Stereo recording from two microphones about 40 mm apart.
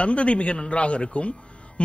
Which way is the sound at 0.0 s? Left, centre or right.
Left.